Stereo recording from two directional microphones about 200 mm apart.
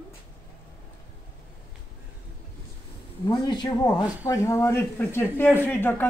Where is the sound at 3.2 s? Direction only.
20° left (ahead or behind).